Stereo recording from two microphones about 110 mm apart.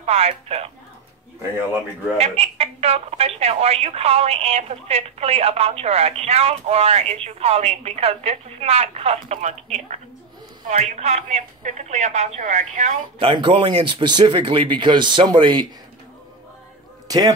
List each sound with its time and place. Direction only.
0.0 s speech: 70° right (ahead or behind)
2.1 s a woman's voice: 75° right (ahead or behind)
13.2 s speech: 50° right (ahead or behind)